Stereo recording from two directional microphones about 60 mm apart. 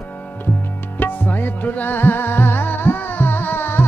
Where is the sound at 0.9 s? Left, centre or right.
Left.